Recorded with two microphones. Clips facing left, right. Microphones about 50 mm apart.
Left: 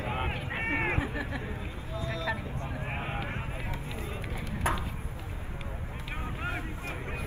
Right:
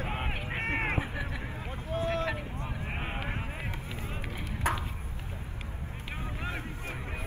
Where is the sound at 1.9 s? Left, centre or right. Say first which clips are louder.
Right 3 dB; right.